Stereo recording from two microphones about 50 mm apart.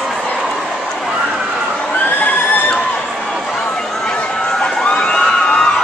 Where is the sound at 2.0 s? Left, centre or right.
Left.